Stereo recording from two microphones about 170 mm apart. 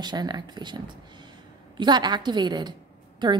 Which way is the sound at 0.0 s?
25° right (ahead or behind).